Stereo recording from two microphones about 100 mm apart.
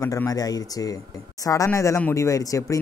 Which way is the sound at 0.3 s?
40° left (ahead or behind).